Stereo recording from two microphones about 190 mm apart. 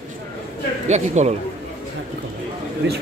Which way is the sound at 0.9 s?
40° right (ahead or behind).